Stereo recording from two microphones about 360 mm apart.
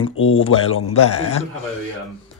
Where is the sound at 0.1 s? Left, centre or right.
Left.